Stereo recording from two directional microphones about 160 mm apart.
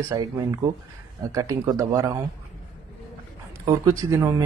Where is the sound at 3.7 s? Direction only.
20° right (ahead or behind).